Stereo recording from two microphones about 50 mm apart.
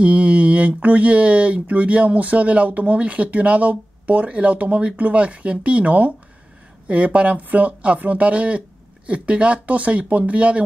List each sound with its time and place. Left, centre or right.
0.0 s speech: right